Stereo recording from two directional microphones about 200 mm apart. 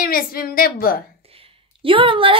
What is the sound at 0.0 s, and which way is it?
Speech, 45° left (ahead or behind).